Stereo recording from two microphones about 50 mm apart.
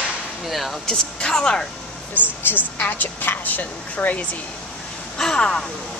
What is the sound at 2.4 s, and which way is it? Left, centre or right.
A woman's voice, left.